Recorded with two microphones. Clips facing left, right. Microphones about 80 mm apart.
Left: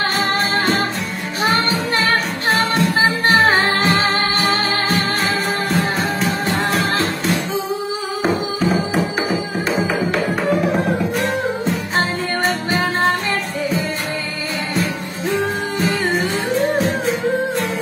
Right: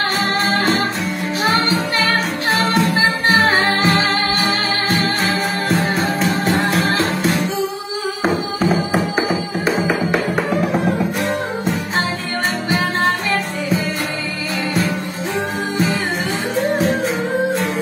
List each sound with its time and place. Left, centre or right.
8.2 s music: centre